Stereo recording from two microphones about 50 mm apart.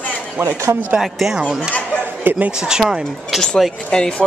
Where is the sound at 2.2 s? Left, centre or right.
Right.